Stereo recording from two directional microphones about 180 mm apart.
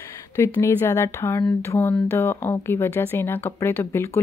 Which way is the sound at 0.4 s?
15° left (ahead or behind).